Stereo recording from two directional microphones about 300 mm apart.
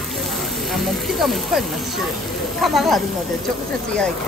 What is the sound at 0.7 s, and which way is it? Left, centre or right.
Speech, centre.